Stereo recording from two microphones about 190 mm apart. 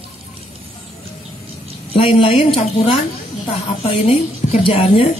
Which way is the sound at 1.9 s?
30° left (ahead or behind).